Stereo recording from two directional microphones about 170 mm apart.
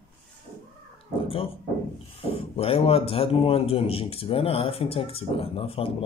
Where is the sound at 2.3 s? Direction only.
35° left (ahead or behind).